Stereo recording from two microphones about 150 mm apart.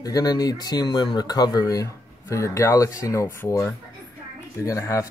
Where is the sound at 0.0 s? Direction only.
25° left (ahead or behind).